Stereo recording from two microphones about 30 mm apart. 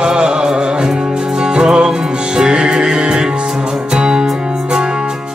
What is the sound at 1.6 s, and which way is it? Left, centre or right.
Music, right.